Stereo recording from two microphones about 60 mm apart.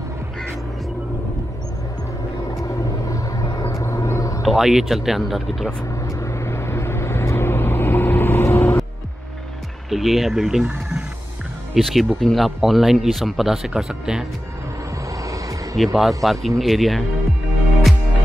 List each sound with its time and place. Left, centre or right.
2.6 s vehicle: left
3.6 s vehicle: left
4.4 s speech: centre
5.9 s vehicle: left
9.8 s speech: centre
10.6 s speech: right
11.7 s speech: centre
15.7 s speech: centre